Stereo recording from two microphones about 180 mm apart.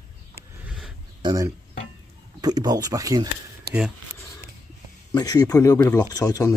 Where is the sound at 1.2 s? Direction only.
20° right (ahead or behind).